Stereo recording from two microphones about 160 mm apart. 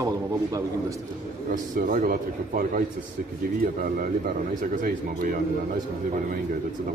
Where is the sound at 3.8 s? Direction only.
60° right (ahead or behind).